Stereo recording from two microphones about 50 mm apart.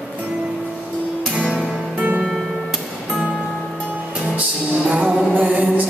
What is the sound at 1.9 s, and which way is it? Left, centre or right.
Music, right.